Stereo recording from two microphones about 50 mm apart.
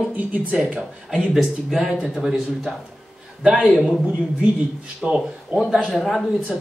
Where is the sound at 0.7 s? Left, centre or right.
Right.